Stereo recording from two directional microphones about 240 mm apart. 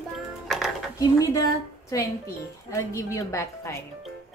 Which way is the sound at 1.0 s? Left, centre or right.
Centre.